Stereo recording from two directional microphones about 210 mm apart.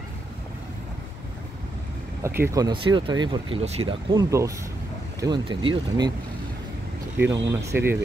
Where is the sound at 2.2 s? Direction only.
10° right (ahead or behind).